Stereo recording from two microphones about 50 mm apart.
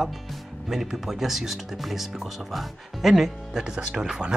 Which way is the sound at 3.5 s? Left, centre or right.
Centre.